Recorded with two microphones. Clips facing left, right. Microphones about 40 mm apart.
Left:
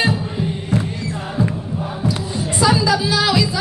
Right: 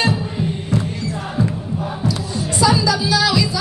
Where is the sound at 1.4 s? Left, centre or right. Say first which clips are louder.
Even; left.